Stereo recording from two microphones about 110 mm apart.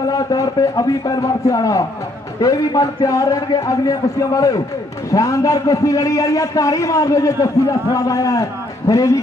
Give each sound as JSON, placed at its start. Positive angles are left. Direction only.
{"t": 0.1, "sound": "a man's voice", "side_deg": 30}